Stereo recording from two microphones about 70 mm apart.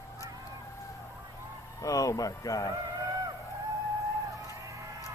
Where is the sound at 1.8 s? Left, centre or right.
Left.